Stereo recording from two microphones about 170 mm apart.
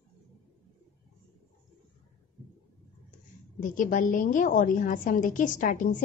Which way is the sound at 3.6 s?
50° left (ahead or behind).